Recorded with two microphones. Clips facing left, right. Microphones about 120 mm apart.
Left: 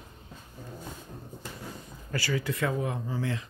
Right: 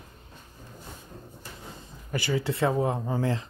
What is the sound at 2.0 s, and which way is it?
Speech, 25° right (ahead or behind).